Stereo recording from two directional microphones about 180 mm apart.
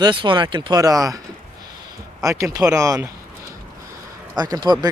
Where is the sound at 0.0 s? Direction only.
25° right (ahead or behind).